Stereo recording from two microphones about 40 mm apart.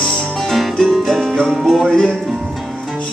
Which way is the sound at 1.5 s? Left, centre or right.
Centre.